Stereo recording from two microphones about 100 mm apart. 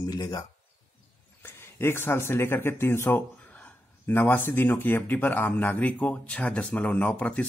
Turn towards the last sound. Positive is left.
turn(degrees=15)  # may be behind; listen again after turning